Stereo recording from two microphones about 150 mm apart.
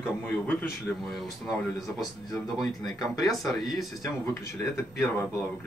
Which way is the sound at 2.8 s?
25° left (ahead or behind).